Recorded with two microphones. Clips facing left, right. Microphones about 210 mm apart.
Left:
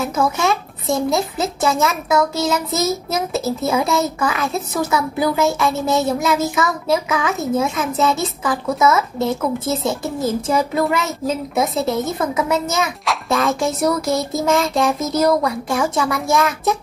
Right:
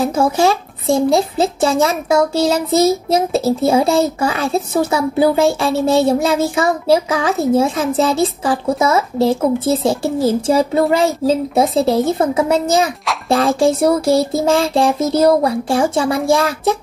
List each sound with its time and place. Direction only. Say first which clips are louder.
0.0 s a child's voice: right 5 dB; 30° right (ahead or behind)